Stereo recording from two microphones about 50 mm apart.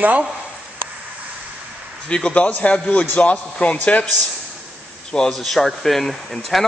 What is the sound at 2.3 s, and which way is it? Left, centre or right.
A man's voice, left.